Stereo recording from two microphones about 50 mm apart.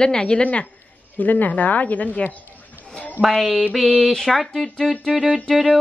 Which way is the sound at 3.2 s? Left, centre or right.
Left.